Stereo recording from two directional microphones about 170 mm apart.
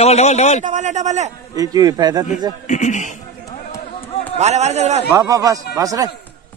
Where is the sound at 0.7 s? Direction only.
45° right (ahead or behind).